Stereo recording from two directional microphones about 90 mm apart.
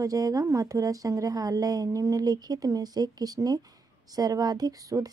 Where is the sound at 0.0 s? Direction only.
40° right (ahead or behind).